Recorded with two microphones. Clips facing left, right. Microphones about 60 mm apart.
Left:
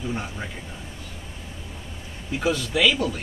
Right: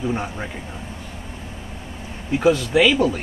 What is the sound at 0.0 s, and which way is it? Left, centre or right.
Speech, right.